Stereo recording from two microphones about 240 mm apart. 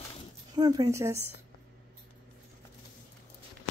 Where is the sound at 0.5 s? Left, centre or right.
Centre.